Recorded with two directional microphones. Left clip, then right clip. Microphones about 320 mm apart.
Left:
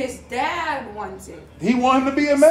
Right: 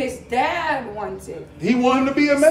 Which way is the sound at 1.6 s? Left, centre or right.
Centre.